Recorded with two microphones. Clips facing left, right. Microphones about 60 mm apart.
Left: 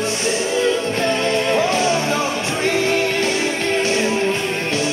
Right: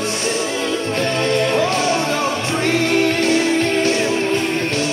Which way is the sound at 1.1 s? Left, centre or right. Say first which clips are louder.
Right 1 dB; right.